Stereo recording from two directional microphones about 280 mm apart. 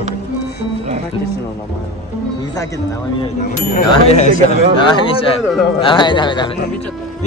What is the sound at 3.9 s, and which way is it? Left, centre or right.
Speech, left.